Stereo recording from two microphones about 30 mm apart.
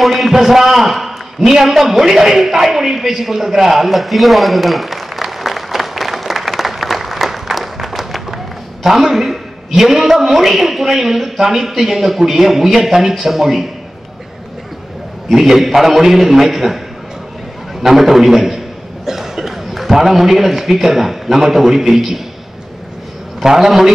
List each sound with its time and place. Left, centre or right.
0.0 s a man's voice: centre
1.6 s a sound: centre
8.8 s a man's voice: centre
15.3 s a man's voice: centre
17.8 s a man's voice: centre
19.0 s cough: centre
19.9 s a man's voice: centre
23.4 s a man's voice: centre